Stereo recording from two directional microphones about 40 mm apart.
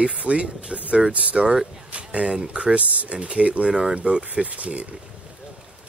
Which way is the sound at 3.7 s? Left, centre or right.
Right.